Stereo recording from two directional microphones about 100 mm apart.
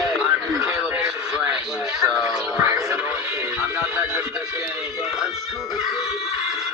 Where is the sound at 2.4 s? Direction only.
30° right (ahead or behind).